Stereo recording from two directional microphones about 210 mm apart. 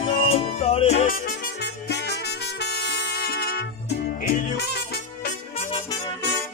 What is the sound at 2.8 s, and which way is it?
Music, 45° left (ahead or behind).